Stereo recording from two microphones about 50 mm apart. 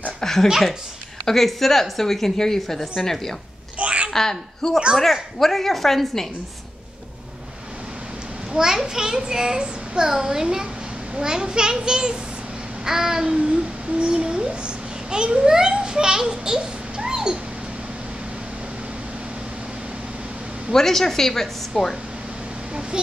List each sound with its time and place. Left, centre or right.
0.2 s a woman's voice: centre
3.7 s a sound: right
4.1 s a woman's voice: centre
8.5 s a child's voice: centre
20.7 s a woman's voice: centre